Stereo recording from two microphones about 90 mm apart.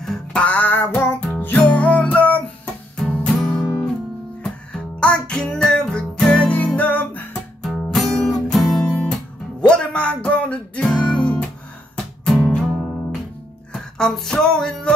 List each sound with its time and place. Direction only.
0.0 s music: 10° left (ahead or behind)
7.6 s music: 5° left (ahead or behind)
12.6 s music: 5° right (ahead or behind)